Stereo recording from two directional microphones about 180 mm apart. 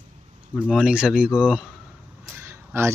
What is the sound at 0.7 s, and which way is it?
Speech, 5° right (ahead or behind).